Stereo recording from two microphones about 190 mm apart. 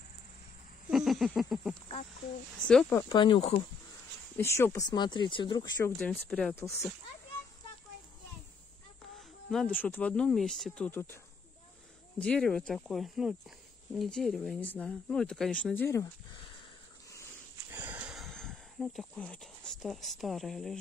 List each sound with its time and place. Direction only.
0.8 s a sound: centre (ahead or behind)
2.7 s speech: 5° left (ahead or behind)
3.0 s speech: 25° left (ahead or behind)
4.4 s speech: 15° left (ahead or behind)
5.8 s speech: 10° left (ahead or behind)
9.5 s speech: centre (ahead or behind)
12.2 s speech: 5° left (ahead or behind)
17.6 s a sound: 10° right (ahead or behind)